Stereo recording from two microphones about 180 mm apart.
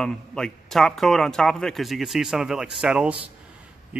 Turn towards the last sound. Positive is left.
turn(degrees=-5)  # may be behind; listen again after turning